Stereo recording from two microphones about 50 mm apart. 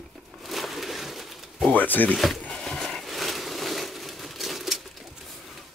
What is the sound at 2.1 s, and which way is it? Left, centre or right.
Speech, centre.